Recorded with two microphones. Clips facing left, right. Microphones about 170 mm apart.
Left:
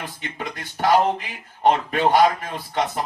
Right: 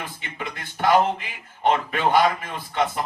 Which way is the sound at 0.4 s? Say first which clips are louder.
Left 1 dB; 40° left (ahead or behind).